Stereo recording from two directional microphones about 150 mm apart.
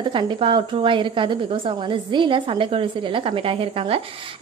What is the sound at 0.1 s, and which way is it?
A woman's voice, 35° right (ahead or behind).